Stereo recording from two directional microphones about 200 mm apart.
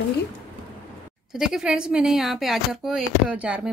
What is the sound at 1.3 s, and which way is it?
A woman's voice, 5° right (ahead or behind).